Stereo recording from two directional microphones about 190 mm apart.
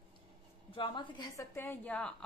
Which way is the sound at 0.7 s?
25° left (ahead or behind).